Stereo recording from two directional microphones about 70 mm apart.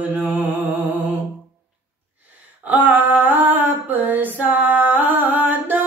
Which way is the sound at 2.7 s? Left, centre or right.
Right.